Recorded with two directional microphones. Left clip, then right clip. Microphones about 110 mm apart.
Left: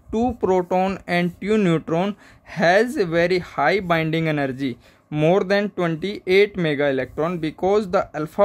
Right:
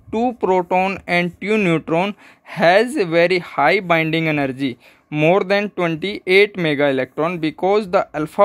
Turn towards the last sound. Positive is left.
turn(degrees=-30)  # may be behind; listen again after turning